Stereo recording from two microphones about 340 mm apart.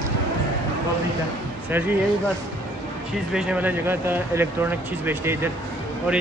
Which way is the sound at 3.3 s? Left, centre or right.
Centre.